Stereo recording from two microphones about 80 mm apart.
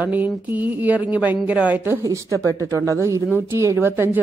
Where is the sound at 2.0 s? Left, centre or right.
Right.